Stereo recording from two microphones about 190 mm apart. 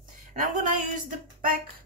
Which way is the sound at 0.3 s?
40° right (ahead or behind).